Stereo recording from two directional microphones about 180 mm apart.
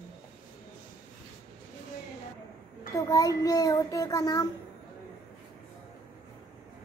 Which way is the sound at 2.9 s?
20° left (ahead or behind).